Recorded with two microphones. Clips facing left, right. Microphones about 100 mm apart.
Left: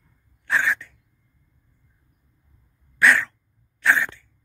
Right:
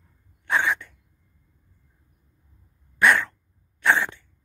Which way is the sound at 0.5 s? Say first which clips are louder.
Even; 20° right (ahead or behind).